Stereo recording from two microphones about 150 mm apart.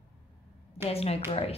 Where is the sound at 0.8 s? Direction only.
40° left (ahead or behind).